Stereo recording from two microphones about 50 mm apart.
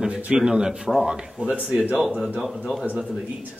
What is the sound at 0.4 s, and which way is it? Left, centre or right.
Speech, centre.